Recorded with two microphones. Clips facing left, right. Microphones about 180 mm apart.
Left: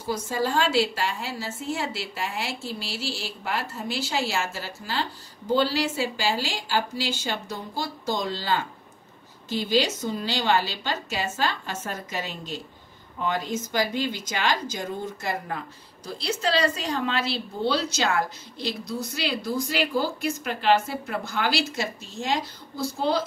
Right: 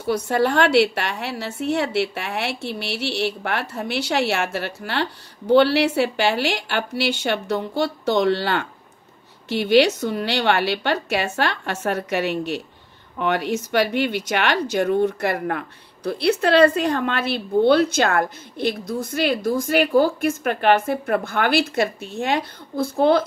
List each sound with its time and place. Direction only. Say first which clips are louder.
0.0 s a woman's voice: right 7 dB; 65° right (ahead or behind)